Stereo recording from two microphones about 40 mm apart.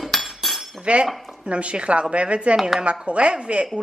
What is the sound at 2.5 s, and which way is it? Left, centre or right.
Speech, centre.